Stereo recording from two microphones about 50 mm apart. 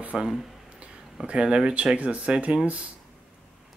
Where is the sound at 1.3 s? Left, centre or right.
Right.